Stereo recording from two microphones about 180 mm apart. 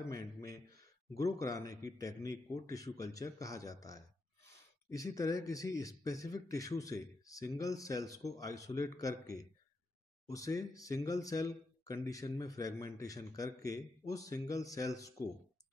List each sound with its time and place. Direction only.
0.1 s speech: 20° left (ahead or behind)